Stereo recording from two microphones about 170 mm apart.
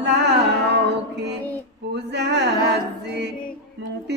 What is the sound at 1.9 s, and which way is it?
Music, 90° right.